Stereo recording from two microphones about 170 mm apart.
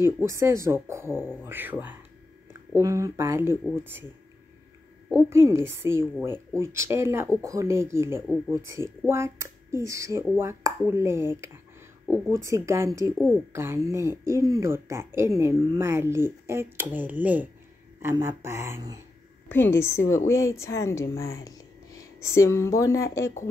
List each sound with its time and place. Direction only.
0.0 s speech: 15° right (ahead or behind)
5.3 s speech: 15° right (ahead or behind)
19.5 s speech: 15° left (ahead or behind)